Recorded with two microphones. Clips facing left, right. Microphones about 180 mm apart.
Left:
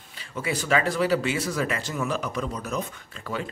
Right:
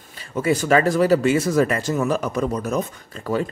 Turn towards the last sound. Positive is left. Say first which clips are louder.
# right 9 dB
turn(degrees=-45)  # may be behind; listen again after turning